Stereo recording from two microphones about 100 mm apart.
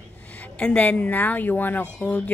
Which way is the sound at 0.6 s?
10° left (ahead or behind).